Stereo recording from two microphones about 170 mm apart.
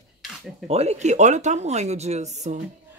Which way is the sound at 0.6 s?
40° right (ahead or behind).